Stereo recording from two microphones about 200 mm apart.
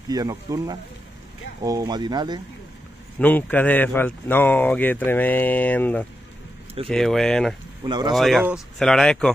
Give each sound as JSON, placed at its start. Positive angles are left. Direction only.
{"t": 0.1, "sound": "speech", "side_deg": -15}
{"t": 3.2, "sound": "speech", "side_deg": 10}
{"t": 7.8, "sound": "speech", "side_deg": -20}
{"t": 8.1, "sound": "speech", "side_deg": 0}